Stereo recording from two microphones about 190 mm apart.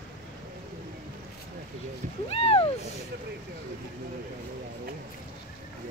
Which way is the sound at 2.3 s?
30° left (ahead or behind).